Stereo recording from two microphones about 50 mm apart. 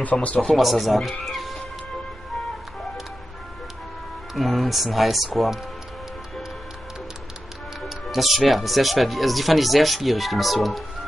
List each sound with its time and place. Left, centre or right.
0.0 s speech: left
0.6 s speech: centre
4.4 s speech: centre
8.1 s speech: centre